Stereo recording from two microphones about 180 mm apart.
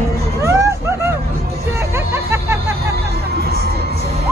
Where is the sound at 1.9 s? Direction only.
15° right (ahead or behind).